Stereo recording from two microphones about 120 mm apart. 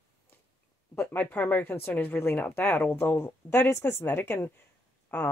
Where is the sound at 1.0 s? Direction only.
15° left (ahead or behind).